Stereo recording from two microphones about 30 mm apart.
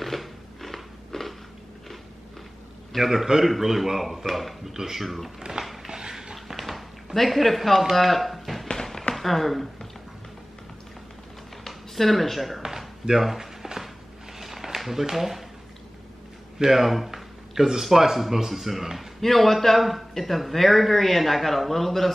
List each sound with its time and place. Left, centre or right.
0.0 s a sound: centre
2.9 s speech: centre
4.7 s speech: centre
5.0 s speech: centre
5.9 s dog: right
6.3 s tap: centre
7.2 s speech: centre
8.7 s a sound: centre
9.1 s speech: centre
11.6 s speech: centre
12.6 s a sound: centre
14.8 s speech: centre
16.5 s speech: centre
19.2 s speech: centre